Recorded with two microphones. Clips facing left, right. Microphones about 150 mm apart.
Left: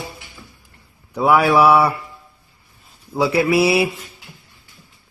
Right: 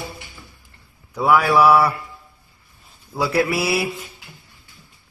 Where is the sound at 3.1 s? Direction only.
20° left (ahead or behind).